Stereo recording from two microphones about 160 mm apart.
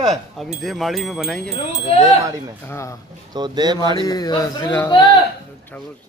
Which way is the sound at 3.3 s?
25° right (ahead or behind).